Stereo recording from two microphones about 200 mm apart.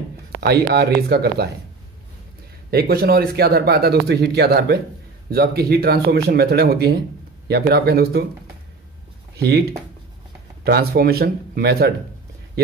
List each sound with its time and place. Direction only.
0.4 s speech: 55° right (ahead or behind)
2.7 s speech: 50° right (ahead or behind)
9.4 s speech: 50° right (ahead or behind)